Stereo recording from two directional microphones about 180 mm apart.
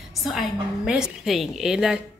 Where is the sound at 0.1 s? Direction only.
Centre (ahead or behind).